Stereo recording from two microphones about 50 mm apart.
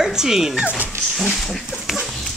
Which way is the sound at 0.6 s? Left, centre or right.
Right.